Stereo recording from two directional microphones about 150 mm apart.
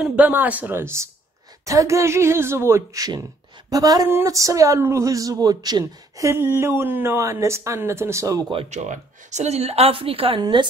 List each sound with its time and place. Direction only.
0.0 s speech: 10° right (ahead or behind)
8.6 s a woman's voice: 50° right (ahead or behind); by 10.7 s 30° right (ahead or behind)